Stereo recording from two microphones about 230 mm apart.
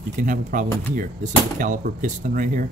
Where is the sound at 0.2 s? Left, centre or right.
Right.